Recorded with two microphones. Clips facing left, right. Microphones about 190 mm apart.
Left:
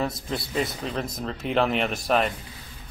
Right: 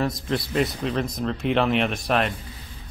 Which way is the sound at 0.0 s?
Centre (ahead or behind).